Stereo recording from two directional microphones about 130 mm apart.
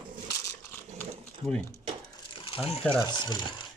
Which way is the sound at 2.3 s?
45° left (ahead or behind).